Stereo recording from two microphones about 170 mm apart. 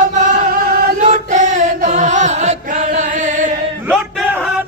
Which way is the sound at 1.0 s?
45° right (ahead or behind).